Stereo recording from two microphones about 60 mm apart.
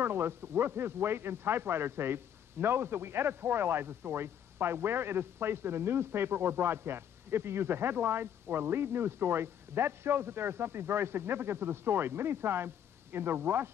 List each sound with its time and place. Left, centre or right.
0.0 s a man's voice: right